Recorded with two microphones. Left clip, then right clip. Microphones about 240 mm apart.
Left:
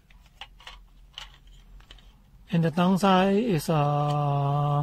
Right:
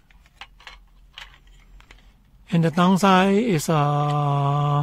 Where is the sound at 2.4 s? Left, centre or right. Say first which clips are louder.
Right 5 dB; right.